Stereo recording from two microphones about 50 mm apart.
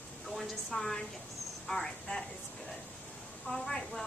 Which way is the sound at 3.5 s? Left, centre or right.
Left.